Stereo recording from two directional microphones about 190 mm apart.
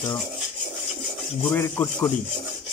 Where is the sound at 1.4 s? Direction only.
10° left (ahead or behind).